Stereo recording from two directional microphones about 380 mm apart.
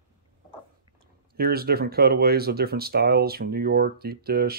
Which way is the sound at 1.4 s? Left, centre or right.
Right.